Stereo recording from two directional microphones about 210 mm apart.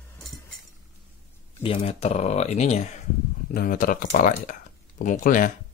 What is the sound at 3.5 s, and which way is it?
Speech, 45° left (ahead or behind).